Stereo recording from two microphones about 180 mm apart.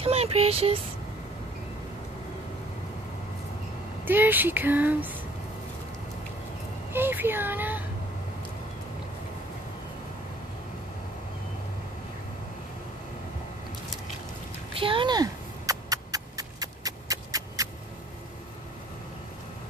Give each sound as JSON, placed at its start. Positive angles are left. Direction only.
{"t": 0.0, "sound": "speech", "side_deg": -35}
{"t": 4.0, "sound": "speech", "side_deg": -10}
{"t": 6.9, "sound": "speech", "side_deg": -10}
{"t": 14.8, "sound": "a sound", "side_deg": -30}